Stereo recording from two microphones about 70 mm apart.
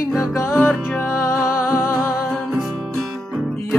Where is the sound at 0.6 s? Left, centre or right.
Left.